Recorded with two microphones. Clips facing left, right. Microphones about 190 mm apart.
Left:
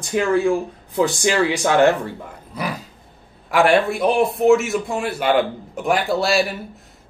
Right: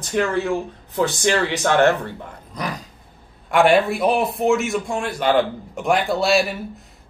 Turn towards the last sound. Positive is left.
turn(degrees=0)  # may be behind; listen again after turning